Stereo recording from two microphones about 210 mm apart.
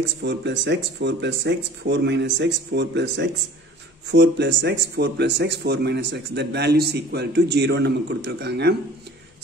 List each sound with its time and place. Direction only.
0.2 s speech: 55° right (ahead or behind)